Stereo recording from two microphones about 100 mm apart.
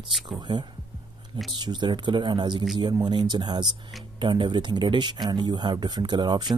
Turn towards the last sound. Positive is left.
turn(degrees=-45)  # may be behind; listen again after turning